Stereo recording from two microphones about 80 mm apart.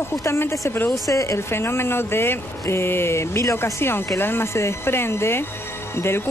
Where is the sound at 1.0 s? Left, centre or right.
Left.